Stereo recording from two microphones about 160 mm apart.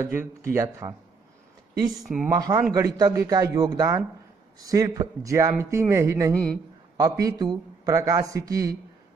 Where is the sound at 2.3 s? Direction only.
20° right (ahead or behind).